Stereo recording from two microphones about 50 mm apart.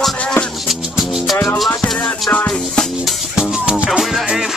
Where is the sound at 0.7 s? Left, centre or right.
Centre.